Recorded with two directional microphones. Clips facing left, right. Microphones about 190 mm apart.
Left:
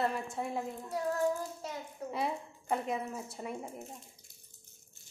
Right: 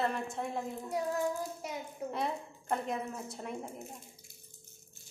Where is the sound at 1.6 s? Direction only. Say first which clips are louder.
Right 1 dB; 15° right (ahead or behind).